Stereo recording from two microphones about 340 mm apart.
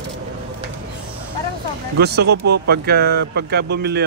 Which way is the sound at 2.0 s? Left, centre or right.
Right.